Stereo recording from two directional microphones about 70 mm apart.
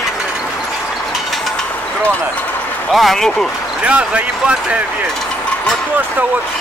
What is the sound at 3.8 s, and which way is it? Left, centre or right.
Speech, centre.